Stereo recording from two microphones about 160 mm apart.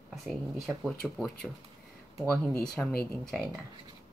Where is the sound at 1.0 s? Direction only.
5° left (ahead or behind).